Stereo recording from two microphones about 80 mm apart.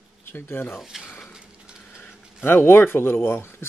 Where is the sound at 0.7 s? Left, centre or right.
Centre.